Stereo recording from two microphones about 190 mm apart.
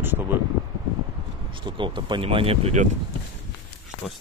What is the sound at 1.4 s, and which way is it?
Speech, 25° right (ahead or behind).